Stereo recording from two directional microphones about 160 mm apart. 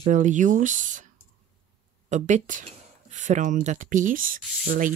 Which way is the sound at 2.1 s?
50° right (ahead or behind).